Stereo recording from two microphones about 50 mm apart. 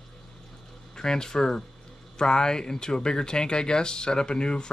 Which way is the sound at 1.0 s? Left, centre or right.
Centre.